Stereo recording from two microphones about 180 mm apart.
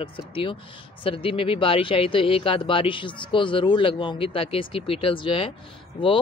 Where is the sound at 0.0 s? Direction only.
30° left (ahead or behind).